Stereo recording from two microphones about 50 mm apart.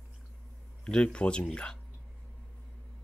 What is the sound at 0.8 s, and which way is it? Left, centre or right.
Speech, centre.